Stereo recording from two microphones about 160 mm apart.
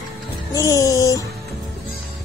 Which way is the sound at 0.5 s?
20° left (ahead or behind).